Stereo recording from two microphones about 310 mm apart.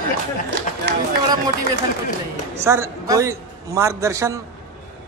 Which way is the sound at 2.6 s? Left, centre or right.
Centre.